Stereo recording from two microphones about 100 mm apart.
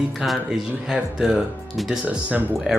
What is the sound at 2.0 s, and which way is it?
Speech, 15° right (ahead or behind).